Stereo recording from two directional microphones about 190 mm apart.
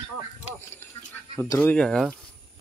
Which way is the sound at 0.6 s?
15° left (ahead or behind).